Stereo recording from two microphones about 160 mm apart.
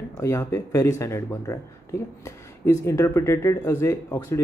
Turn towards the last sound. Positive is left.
turn(degrees=15)  # may be behind; listen again after turning